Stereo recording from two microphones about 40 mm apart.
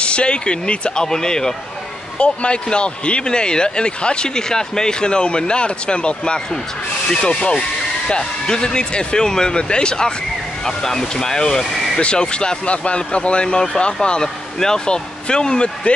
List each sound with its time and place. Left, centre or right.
0.0 s speech: left
2.1 s speech: left
8.1 s speech: centre